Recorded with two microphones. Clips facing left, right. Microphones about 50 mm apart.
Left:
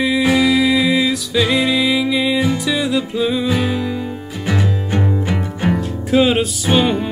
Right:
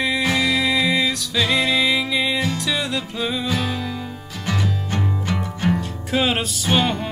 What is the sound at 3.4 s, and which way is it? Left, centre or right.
Music, centre.